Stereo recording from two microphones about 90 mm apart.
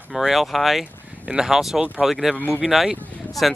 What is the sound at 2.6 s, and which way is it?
Speech, centre (ahead or behind).